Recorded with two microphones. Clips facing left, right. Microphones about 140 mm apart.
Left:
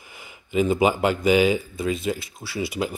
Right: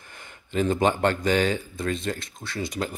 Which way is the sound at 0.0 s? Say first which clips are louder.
Left 1 dB; 5° left (ahead or behind).